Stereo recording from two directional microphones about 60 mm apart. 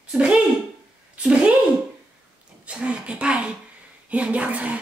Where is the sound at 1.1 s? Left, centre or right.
Centre.